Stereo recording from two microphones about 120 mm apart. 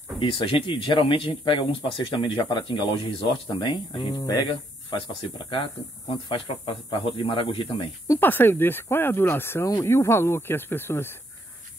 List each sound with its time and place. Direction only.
0.2 s speech: 50° left (ahead or behind)
4.2 s speech: 30° left (ahead or behind)
4.9 s speech: 45° left (ahead or behind)
8.2 s speech: 15° left (ahead or behind)